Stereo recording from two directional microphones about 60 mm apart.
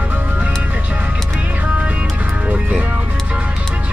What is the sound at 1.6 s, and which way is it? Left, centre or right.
Music, right.